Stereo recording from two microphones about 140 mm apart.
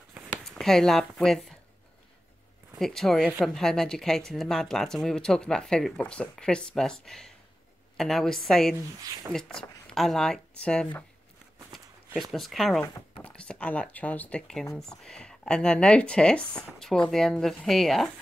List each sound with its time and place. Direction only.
0.1 s a sound: 5° left (ahead or behind)
2.8 s speech: centre (ahead or behind)
9.0 s speech: 25° right (ahead or behind)
9.3 s speech: 5° left (ahead or behind)
12.2 s speech: centre (ahead or behind)